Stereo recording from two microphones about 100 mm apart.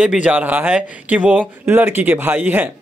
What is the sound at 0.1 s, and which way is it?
Speech, 15° right (ahead or behind).